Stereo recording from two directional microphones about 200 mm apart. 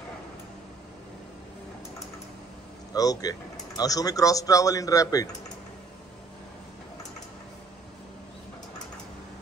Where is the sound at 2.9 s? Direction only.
20° left (ahead or behind).